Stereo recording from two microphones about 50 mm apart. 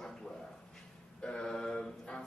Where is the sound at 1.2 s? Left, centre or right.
Left.